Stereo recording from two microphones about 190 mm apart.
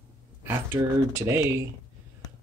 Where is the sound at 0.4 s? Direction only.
15° right (ahead or behind).